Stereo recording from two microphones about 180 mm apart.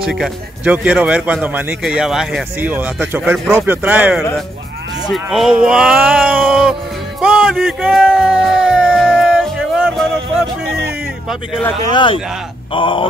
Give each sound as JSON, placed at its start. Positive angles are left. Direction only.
{"t": 0.0, "sound": "speech", "side_deg": -5}
{"t": 5.0, "sound": "a sound", "side_deg": 0}
{"t": 11.9, "sound": "a man's voice", "side_deg": 25}